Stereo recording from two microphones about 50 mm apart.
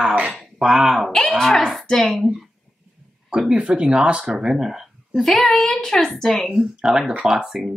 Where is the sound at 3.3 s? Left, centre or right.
Centre.